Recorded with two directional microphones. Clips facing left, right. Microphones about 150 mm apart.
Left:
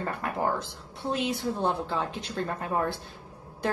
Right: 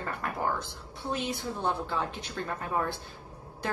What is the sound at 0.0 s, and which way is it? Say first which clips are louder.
Speech: left 3 dB; 30° left (ahead or behind).